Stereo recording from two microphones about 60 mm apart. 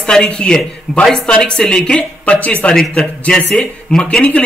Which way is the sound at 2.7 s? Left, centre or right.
Centre.